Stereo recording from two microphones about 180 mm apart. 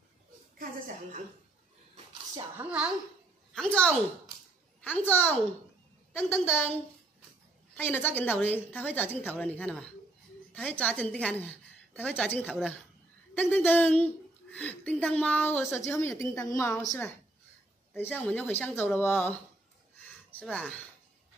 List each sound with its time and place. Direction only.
0.6 s a woman's voice: 50° right (ahead or behind)
2.3 s a woman's voice: 10° right (ahead or behind)
3.5 s a woman's voice: 5° left (ahead or behind)
7.7 s a woman's voice: 10° left (ahead or behind)
12.4 s a woman's voice: centre (ahead or behind)
13.4 s a woman's voice: 10° left (ahead or behind)
17.9 s a woman's voice: 10° left (ahead or behind)